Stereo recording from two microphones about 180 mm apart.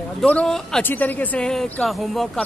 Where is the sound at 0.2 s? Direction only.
5° left (ahead or behind).